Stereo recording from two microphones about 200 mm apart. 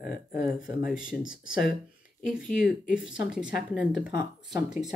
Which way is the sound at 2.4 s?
45° left (ahead or behind).